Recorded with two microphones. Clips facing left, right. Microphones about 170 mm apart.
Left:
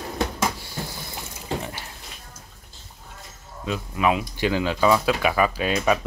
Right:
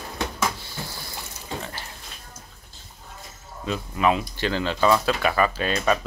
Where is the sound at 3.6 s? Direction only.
5° left (ahead or behind).